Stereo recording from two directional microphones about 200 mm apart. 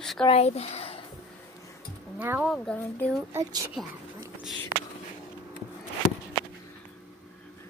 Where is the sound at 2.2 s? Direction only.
10° right (ahead or behind).